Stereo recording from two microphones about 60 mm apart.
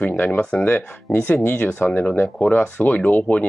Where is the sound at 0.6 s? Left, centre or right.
Left.